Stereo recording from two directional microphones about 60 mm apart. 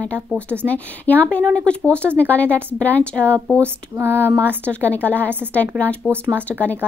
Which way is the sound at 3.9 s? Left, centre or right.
Right.